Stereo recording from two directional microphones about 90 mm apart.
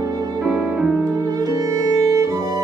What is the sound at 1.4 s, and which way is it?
Music, 40° right (ahead or behind).